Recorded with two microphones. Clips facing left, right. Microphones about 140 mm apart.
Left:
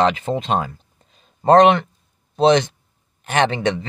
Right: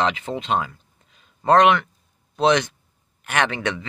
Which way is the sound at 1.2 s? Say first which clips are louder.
Left 4 dB; 35° left (ahead or behind).